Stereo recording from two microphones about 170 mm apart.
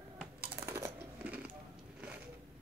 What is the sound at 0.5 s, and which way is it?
Typing, 15° right (ahead or behind).